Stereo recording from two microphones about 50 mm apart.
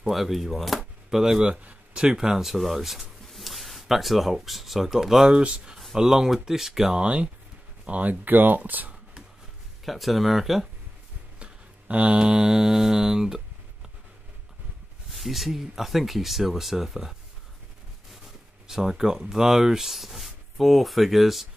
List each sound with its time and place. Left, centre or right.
0.1 s speech: centre
1.1 s speech: centre
1.4 s speech: right; by 5.3 s centre
5.3 s speech: centre
7.0 s speech: right
9.8 s speech: centre
11.3 s mantra: right
15.1 s speech: centre
18.1 s speech: centre